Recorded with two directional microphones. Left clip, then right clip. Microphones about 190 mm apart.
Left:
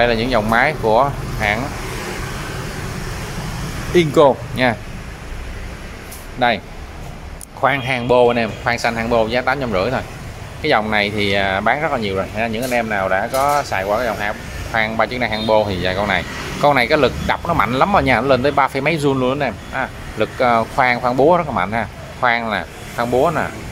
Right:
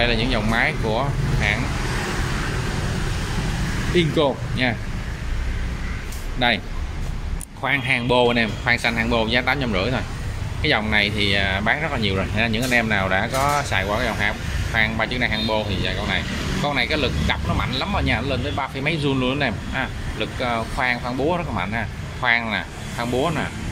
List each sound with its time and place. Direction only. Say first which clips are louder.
0.0 s speech: left 6 dB; 20° left (ahead or behind)
2.5 s vehicle: even; centre (ahead or behind)
3.8 s speech: left 8 dB; 20° left (ahead or behind)
6.4 s speech: left 4 dB; 15° left (ahead or behind)
7.6 s speech: left 4 dB; 10° left (ahead or behind)
14.7 s speech: left 4 dB; 15° left (ahead or behind)
20.2 s speech: left 9 dB; 20° left (ahead or behind)